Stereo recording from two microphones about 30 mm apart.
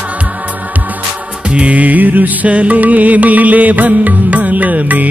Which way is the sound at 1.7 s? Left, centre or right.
Right.